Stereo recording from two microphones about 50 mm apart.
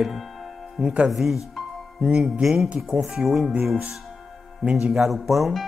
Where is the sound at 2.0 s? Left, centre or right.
Centre.